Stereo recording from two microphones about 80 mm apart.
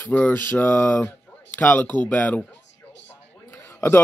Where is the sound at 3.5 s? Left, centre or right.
Left.